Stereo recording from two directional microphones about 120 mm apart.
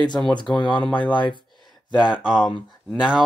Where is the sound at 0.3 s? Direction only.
40° left (ahead or behind).